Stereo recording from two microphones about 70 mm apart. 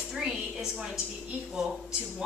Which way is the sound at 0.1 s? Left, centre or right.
Centre.